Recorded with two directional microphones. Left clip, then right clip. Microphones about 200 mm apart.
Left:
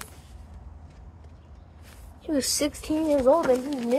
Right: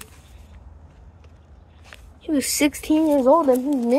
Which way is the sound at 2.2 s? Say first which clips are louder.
Right 3 dB; 25° right (ahead or behind).